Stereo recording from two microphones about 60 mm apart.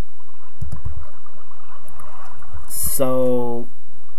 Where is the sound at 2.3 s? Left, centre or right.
Left.